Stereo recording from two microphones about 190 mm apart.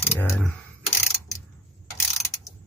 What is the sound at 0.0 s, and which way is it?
Speech, 10° left (ahead or behind).